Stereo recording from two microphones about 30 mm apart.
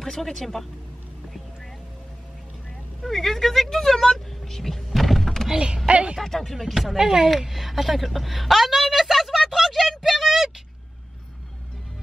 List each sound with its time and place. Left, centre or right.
0.0 s speech: centre
3.0 s speech: centre
4.8 s thunk: centre
5.9 s speech: right
6.2 s speech: centre
6.5 s speech: centre
7.0 s speech: centre
7.2 s a woman's voice: centre
9.5 s a sound: centre